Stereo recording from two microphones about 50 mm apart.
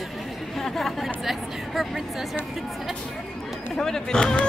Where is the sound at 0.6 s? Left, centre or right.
Centre.